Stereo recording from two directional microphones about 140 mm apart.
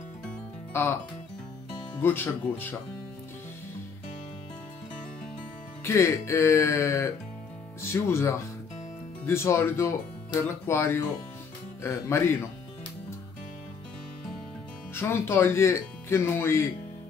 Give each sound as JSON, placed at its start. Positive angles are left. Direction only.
{"t": 0.7, "sound": "speech", "side_deg": 15}
{"t": 2.0, "sound": "speech", "side_deg": 15}
{"t": 5.9, "sound": "speech", "side_deg": 20}
{"t": 15.0, "sound": "speech", "side_deg": 20}